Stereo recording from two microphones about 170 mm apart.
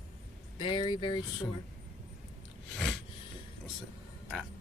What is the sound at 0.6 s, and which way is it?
Speech, 25° left (ahead or behind).